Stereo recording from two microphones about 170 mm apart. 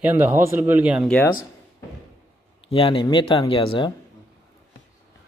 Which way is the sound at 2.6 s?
30° left (ahead or behind).